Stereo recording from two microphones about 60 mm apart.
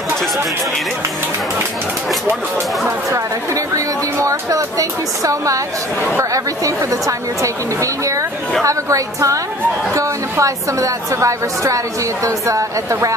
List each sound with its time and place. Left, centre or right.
3.1 s a woman's voice: right